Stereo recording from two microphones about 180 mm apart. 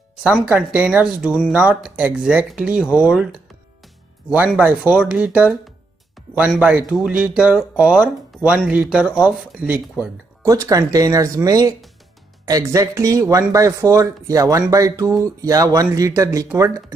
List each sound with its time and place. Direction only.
0.2 s speech: 5° right (ahead or behind)